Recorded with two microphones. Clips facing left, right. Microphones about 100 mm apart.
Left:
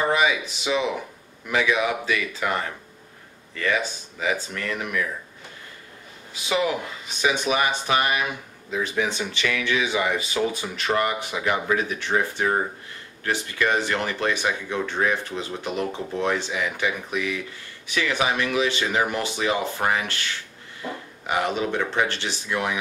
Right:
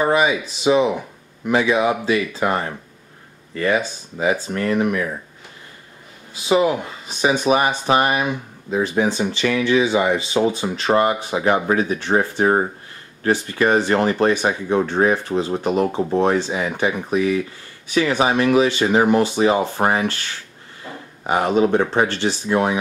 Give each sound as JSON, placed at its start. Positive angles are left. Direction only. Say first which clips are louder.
{"t": 0.0, "sound": "speech", "louder": "right 4 dB", "side_deg": -35}
{"t": 6.3, "sound": "speech", "louder": "right 7 dB", "side_deg": -35}